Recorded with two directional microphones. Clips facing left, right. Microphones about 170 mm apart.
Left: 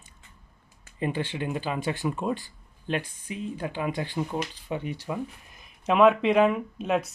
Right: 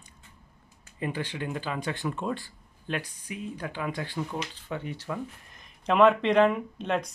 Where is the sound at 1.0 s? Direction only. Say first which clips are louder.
Left 3 dB; 25° left (ahead or behind).